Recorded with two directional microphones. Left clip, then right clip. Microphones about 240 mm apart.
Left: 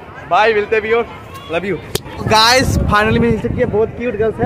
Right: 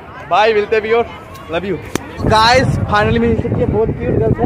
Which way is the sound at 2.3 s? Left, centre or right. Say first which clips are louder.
Even; centre.